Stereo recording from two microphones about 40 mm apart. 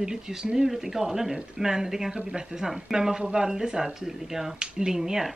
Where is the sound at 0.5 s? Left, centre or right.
Centre.